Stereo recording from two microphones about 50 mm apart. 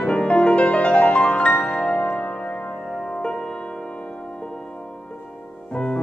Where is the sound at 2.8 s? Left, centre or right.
Centre.